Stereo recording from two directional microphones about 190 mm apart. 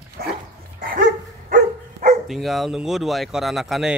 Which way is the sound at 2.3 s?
Centre (ahead or behind).